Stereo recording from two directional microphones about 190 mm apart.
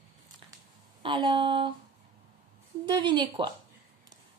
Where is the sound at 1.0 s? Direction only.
25° right (ahead or behind).